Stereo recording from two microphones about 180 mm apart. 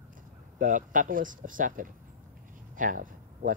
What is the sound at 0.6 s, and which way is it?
Speech, 45° right (ahead or behind).